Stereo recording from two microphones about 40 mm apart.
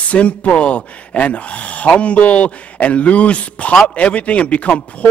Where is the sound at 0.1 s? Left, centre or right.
Left.